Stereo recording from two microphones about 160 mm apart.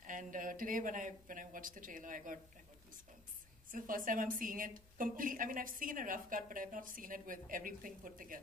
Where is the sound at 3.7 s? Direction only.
60° right (ahead or behind).